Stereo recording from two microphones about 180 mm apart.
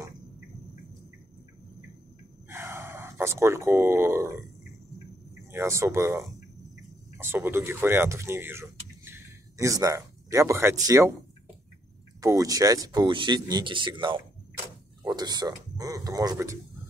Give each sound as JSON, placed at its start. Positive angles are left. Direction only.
{"t": 2.4, "sound": "gasp", "side_deg": -15}
{"t": 5.5, "sound": "speech", "side_deg": -15}
{"t": 12.2, "sound": "speech", "side_deg": -20}